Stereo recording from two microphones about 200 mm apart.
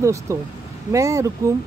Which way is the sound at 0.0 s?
15° right (ahead or behind).